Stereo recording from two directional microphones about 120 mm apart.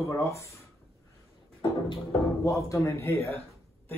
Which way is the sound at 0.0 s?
25° left (ahead or behind).